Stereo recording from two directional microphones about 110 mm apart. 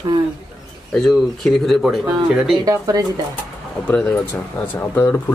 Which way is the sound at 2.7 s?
35° right (ahead or behind).